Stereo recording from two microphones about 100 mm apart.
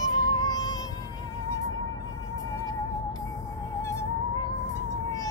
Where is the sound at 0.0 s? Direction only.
40° left (ahead or behind).